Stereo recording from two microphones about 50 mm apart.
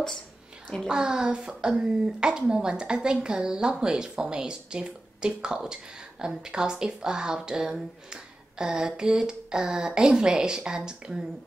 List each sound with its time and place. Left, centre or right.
0.8 s speech: centre